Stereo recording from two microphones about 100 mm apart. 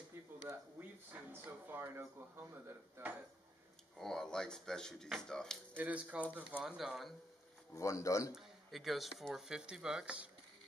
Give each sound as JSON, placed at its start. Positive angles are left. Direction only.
{"t": 0.5, "sound": "speech", "side_deg": -20}
{"t": 4.0, "sound": "speech", "side_deg": 5}
{"t": 5.8, "sound": "speech", "side_deg": -15}
{"t": 6.6, "sound": "speech", "side_deg": -5}
{"t": 7.7, "sound": "speech", "side_deg": 30}
{"t": 8.4, "sound": "speech", "side_deg": 0}